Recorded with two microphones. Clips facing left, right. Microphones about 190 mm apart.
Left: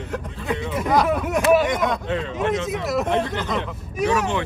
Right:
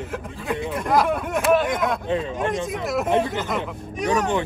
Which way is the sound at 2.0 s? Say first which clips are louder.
Right 1 dB; 15° right (ahead or behind).